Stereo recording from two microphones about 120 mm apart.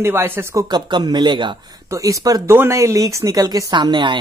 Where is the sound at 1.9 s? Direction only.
30° right (ahead or behind).